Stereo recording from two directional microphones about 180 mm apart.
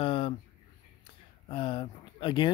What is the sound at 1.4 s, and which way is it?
Speech, 25° left (ahead or behind).